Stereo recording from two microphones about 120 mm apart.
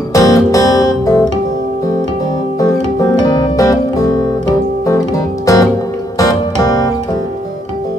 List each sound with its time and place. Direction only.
0.1 s music: 30° left (ahead or behind)
2.6 s music: 30° left (ahead or behind)